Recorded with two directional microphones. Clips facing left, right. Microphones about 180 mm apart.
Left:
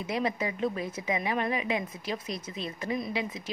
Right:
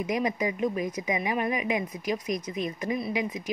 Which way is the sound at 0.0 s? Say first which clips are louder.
Right 3 dB; 15° right (ahead or behind).